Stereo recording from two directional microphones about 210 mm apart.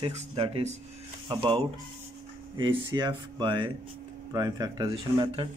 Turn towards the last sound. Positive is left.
turn(degrees=-25)  # may be behind; listen again after turning